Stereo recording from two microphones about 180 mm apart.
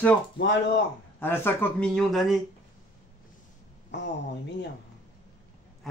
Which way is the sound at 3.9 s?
75° left (ahead or behind).